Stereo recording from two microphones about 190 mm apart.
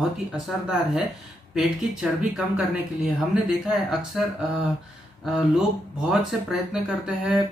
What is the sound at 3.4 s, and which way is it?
Speech, 5° right (ahead or behind).